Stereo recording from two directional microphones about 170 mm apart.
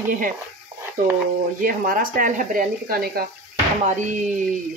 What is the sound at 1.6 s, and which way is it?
Speech, 55° right (ahead or behind).